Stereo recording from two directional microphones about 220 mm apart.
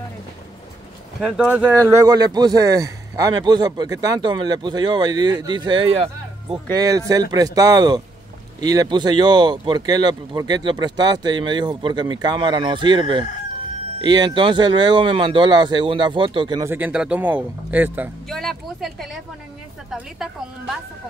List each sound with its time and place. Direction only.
1.2 s speech: centre (ahead or behind)